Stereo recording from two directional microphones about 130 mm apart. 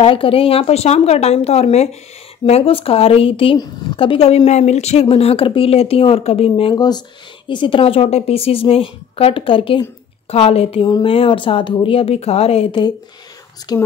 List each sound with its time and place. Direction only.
0.0 s a woman's voice: 45° left (ahead or behind); by 5.0 s 60° left (ahead or behind)
5.0 s a woman's voice: 45° left (ahead or behind)
13.7 s speech: 35° left (ahead or behind)